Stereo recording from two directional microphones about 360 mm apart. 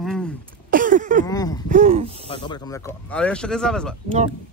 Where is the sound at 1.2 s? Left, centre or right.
Centre.